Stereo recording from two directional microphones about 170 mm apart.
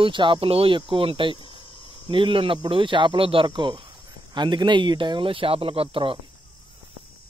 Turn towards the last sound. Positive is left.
turn(degrees=-30)  # may be behind; listen again after turning